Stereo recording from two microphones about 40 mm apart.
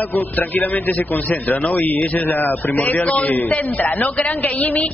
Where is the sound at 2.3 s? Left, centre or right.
Left.